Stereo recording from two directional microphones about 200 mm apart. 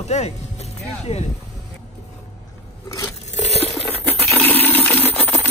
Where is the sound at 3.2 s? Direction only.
35° left (ahead or behind).